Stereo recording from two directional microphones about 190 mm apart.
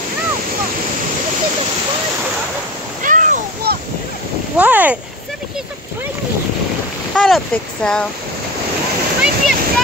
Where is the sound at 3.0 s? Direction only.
45° right (ahead or behind).